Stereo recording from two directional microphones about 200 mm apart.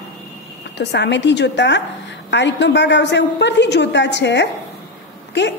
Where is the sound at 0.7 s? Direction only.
60° left (ahead or behind).